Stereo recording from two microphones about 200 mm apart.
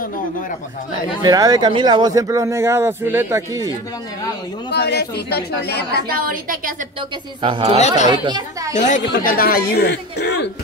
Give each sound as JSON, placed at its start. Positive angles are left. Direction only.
{"t": 1.2, "sound": "speech", "side_deg": -20}
{"t": 4.7, "sound": "speech", "side_deg": 55}
{"t": 6.0, "sound": "a woman's voice", "side_deg": -45}
{"t": 7.4, "sound": "speech", "side_deg": -25}
{"t": 7.8, "sound": "speech", "side_deg": 35}
{"t": 8.1, "sound": "speech", "side_deg": -20}
{"t": 8.7, "sound": "speech", "side_deg": 35}